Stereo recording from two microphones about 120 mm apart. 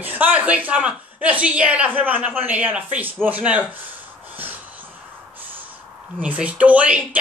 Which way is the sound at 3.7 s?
15° right (ahead or behind).